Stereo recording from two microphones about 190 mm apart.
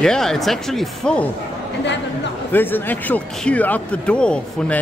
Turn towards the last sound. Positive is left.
turn(degrees=5)  # may be behind; listen again after turning